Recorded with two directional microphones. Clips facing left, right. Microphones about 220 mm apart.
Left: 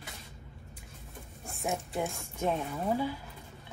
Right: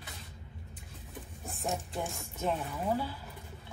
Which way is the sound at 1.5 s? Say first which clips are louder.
Left 2 dB; centre (ahead or behind).